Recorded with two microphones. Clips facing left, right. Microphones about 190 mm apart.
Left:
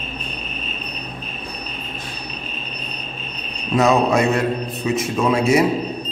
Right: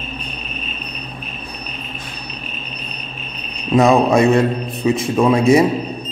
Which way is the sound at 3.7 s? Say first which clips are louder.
Right 4 dB; 30° right (ahead or behind).